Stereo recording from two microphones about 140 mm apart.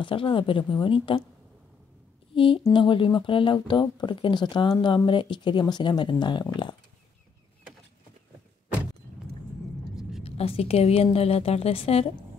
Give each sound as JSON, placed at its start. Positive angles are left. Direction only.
{"t": 0.0, "sound": "speech", "side_deg": 40}
{"t": 2.3, "sound": "speech", "side_deg": 40}
{"t": 10.2, "sound": "a woman's voice", "side_deg": 45}